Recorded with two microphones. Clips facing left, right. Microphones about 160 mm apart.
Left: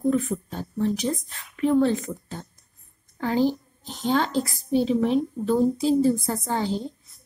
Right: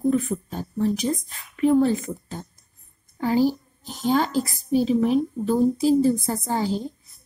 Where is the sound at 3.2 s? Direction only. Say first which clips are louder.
Right 2 dB; 10° right (ahead or behind).